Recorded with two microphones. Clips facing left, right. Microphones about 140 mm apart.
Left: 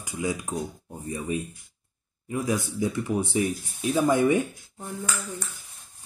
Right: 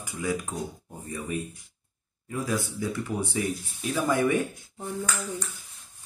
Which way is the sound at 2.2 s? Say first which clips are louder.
Left 2 dB; 20° left (ahead or behind).